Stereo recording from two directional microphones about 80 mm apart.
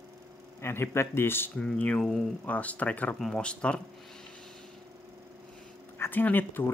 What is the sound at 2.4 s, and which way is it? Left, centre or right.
Speech, centre.